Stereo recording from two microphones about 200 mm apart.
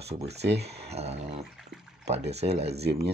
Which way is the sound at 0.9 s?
30° right (ahead or behind).